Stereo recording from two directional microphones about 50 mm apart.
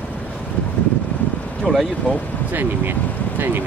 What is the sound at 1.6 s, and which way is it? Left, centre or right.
Speech, centre.